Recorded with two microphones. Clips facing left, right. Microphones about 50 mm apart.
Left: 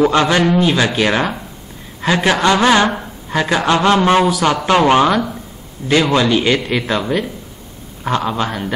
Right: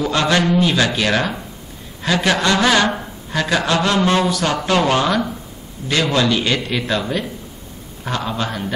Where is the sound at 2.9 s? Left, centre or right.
Centre.